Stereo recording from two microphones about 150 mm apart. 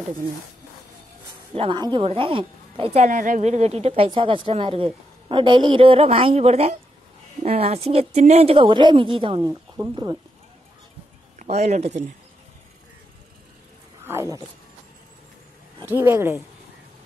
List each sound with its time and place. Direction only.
1.5 s a woman's voice: 35° right (ahead or behind)
9.4 s speech: 20° right (ahead or behind)
11.3 s speech: 45° right (ahead or behind)
14.0 s a sound: 20° right (ahead or behind)
15.8 s a woman's voice: 15° right (ahead or behind)